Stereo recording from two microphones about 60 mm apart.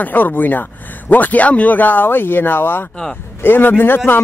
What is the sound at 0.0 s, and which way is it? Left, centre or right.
Speech, left.